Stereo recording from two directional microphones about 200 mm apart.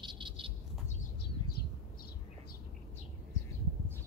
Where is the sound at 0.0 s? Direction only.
25° right (ahead or behind).